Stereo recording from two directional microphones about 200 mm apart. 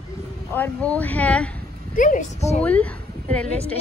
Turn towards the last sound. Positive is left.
turn(degrees=5)  # may be behind; listen again after turning